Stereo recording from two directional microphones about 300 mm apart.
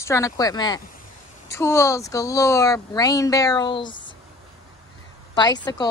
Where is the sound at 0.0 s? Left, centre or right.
Centre.